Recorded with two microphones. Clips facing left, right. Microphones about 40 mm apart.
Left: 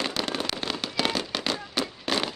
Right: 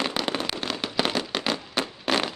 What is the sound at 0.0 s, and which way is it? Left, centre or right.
Firecracker, centre.